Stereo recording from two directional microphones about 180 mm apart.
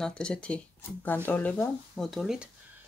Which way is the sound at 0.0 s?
5° left (ahead or behind).